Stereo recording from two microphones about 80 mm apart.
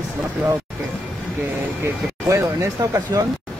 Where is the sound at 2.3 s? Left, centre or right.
Right.